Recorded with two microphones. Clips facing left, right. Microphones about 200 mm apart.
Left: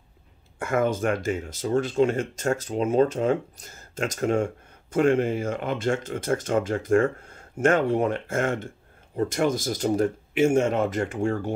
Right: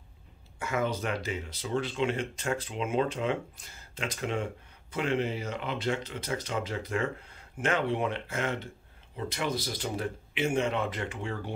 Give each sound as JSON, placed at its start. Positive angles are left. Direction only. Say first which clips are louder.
{"t": 0.6, "sound": "speech", "louder": "left 7 dB", "side_deg": 50}